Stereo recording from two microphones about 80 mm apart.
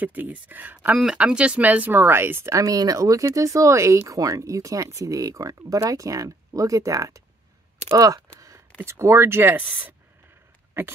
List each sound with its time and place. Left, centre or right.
0.0 s speech: right
2.5 s speech: right
7.9 s a sound: right
8.7 s speech: right